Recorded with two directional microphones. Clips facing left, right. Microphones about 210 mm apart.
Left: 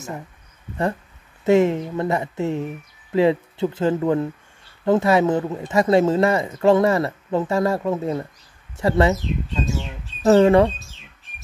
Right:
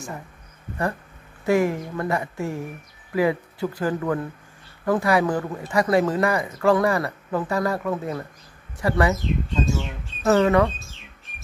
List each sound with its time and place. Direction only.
1.4 s speech: 20° left (ahead or behind)
10.2 s speech: 30° left (ahead or behind)